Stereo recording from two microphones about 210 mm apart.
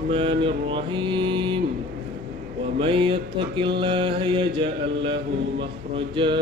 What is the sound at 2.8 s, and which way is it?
Mantra, 25° right (ahead or behind).